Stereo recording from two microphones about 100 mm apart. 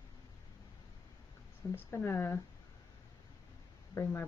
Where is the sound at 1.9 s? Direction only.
25° left (ahead or behind).